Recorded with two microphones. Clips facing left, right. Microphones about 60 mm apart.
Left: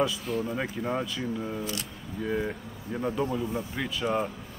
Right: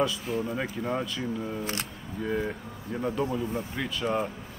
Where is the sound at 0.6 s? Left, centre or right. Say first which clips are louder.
Even; centre.